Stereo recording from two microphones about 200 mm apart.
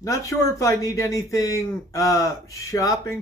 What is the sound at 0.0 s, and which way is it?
Speech, 15° left (ahead or behind).